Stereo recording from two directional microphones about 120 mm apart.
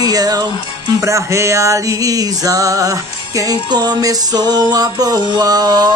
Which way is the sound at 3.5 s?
35° right (ahead or behind).